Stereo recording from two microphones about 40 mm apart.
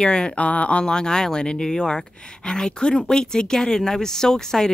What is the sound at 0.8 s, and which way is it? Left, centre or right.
Speech, centre.